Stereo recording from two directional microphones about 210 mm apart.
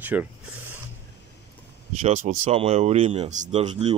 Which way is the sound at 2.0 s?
35° right (ahead or behind).